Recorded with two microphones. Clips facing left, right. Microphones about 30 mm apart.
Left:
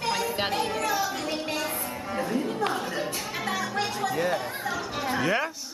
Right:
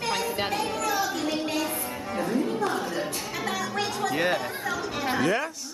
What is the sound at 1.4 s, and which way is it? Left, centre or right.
Music, centre.